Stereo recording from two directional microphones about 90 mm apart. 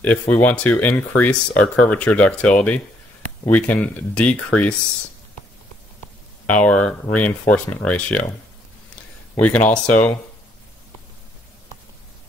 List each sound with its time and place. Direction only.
0.0 s speech: 15° left (ahead or behind)
6.5 s speech: 15° left (ahead or behind)
9.4 s speech: 15° left (ahead or behind)